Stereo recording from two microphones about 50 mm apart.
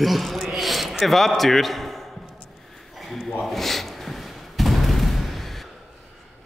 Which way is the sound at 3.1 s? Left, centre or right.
Centre.